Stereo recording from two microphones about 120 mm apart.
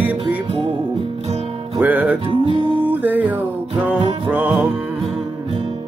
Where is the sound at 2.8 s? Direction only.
15° right (ahead or behind).